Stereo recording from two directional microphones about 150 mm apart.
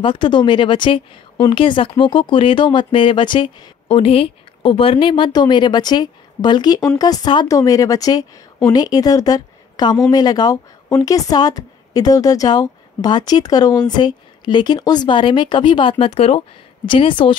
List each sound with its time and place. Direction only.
0.0 s a woman's voice: 30° left (ahead or behind)